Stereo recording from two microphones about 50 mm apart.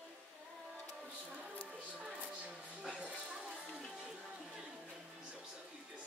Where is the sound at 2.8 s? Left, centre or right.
Centre.